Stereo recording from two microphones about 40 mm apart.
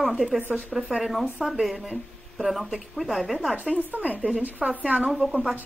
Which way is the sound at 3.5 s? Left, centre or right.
Right.